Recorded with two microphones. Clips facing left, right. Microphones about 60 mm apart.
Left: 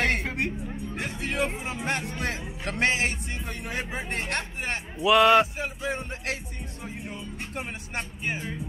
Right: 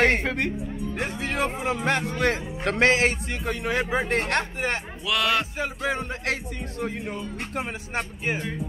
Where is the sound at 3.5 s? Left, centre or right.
Right.